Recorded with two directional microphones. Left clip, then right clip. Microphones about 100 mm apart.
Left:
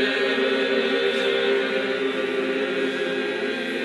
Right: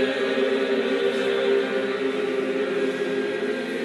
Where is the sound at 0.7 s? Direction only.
20° left (ahead or behind).